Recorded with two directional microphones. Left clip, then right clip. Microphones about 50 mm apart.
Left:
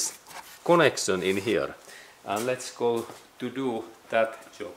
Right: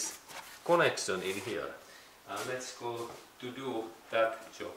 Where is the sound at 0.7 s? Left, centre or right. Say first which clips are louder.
Left 7 dB; left.